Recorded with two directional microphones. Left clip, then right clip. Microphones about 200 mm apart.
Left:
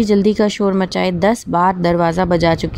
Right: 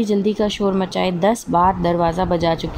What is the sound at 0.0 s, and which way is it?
Speech, 50° left (ahead or behind).